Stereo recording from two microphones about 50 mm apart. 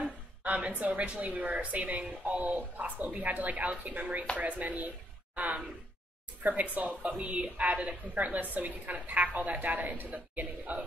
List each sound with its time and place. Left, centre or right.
0.4 s a woman's voice: right